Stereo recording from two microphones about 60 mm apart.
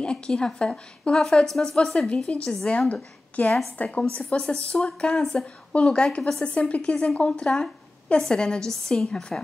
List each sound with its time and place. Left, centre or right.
0.0 s a woman's voice: centre